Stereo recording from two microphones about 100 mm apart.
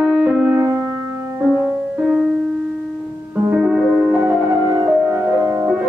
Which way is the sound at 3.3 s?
20° right (ahead or behind).